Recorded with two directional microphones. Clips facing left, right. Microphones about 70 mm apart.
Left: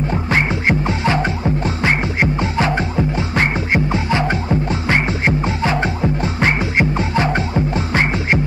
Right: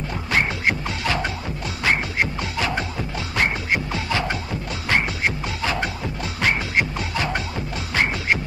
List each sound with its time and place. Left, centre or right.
0.1 s music: left